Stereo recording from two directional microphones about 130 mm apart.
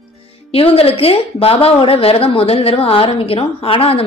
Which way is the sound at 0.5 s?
50° left (ahead or behind).